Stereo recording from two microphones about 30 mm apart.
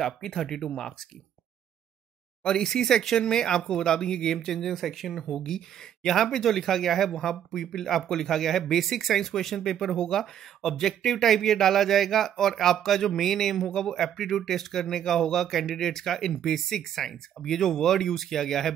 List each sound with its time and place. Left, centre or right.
0.0 s speech: centre
2.4 s speech: centre
5.3 s speech: centre